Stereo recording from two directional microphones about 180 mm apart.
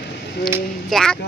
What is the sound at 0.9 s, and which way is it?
Speech, 5° left (ahead or behind).